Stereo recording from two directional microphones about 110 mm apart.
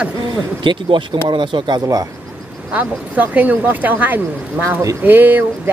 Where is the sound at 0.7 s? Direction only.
45° right (ahead or behind).